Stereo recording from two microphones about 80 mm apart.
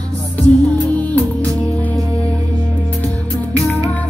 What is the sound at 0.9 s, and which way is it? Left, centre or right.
Music, centre.